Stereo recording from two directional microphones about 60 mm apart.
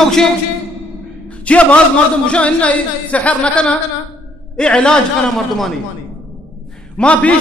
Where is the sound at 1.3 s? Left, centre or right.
Left.